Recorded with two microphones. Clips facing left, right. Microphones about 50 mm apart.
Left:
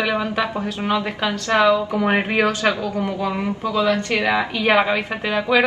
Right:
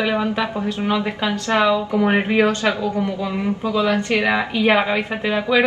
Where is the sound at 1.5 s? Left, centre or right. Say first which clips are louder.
Left 1 dB; right.